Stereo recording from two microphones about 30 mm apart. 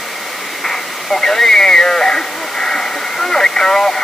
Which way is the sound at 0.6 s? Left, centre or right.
Centre.